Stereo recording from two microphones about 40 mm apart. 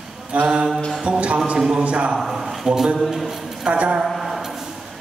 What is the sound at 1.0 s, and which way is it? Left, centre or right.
A man's voice, right.